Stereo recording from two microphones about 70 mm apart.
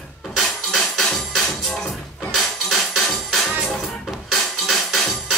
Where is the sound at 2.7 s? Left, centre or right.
Centre.